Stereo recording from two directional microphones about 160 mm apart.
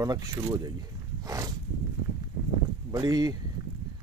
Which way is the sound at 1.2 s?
20° right (ahead or behind).